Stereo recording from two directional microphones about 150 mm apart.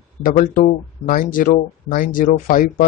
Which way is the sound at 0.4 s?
60° left (ahead or behind).